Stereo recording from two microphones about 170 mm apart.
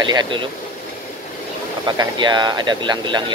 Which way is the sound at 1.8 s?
25° right (ahead or behind).